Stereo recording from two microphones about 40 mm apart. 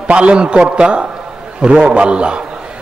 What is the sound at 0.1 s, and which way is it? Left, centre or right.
A man's voice, right.